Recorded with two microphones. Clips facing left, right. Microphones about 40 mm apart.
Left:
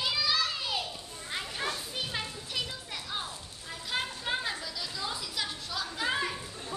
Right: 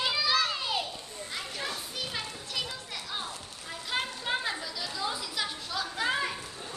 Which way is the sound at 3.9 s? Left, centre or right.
Centre.